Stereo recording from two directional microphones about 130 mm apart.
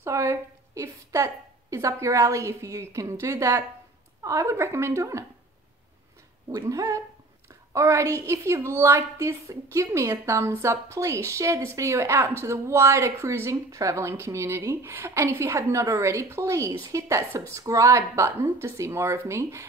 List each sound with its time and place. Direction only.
0.0 s a woman's voice: 20° right (ahead or behind)
6.7 s a woman's voice: 25° right (ahead or behind)